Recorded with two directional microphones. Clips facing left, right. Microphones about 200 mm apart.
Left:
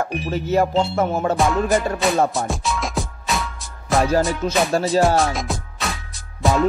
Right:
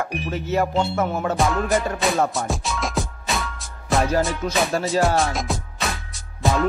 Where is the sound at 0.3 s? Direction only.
35° left (ahead or behind).